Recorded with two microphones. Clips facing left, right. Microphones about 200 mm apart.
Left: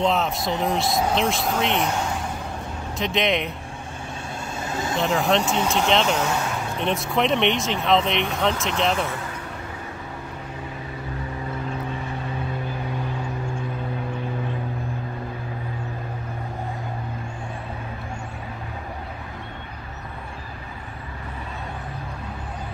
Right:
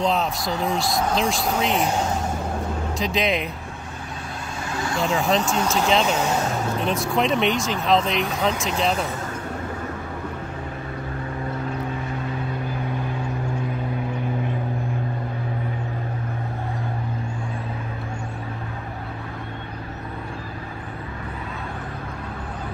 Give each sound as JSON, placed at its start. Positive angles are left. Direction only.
{"t": 0.0, "sound": "speech", "side_deg": 0}
{"t": 3.0, "sound": "speech", "side_deg": 0}
{"t": 4.6, "sound": "vehicle", "side_deg": 20}
{"t": 4.9, "sound": "speech", "side_deg": 0}